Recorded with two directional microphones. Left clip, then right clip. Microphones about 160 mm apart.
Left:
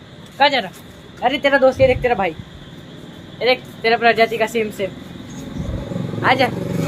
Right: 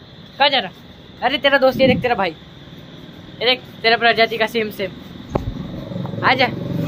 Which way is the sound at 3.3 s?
Centre (ahead or behind).